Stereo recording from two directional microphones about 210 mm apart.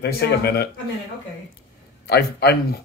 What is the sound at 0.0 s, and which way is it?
Speech, 50° left (ahead or behind).